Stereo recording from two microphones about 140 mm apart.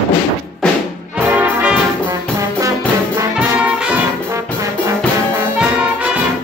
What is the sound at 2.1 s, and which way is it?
Music, 25° right (ahead or behind).